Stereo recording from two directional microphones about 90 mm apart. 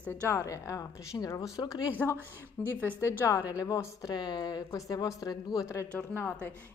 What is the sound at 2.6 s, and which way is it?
Speech, 20° left (ahead or behind).